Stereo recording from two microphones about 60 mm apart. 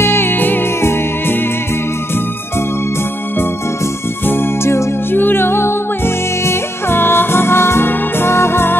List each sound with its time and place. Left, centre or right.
0.0 s music: left
4.3 s music: left